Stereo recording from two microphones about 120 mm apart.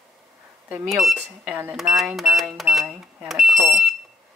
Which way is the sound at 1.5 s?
15° right (ahead or behind).